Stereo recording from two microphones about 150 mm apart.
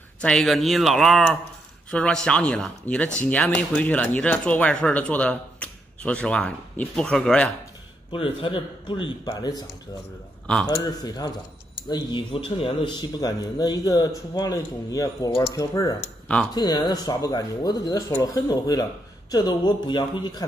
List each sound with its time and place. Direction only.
0.2 s speech: 5° left (ahead or behind)
8.1 s a man's voice: 35° left (ahead or behind)
10.4 s a man's voice: 5° left (ahead or behind)
10.7 s a man's voice: 30° left (ahead or behind)